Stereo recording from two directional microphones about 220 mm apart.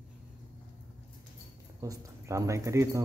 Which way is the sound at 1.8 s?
15° right (ahead or behind).